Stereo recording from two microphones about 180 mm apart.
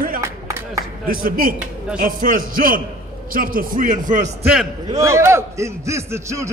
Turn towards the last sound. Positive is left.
turn(degrees=-15)  # may be behind; listen again after turning